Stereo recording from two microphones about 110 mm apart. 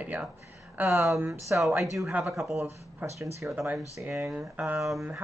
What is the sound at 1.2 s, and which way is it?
Speech, 25° right (ahead or behind).